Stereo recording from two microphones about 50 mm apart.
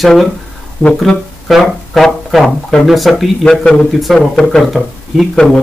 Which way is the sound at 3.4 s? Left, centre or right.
Centre.